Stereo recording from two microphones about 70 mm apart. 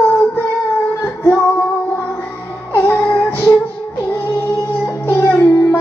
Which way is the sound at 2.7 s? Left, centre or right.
Left.